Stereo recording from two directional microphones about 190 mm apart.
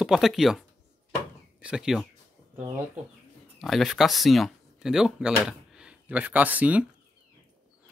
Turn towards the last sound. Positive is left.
turn(degrees=-10)  # may be behind; listen again after turning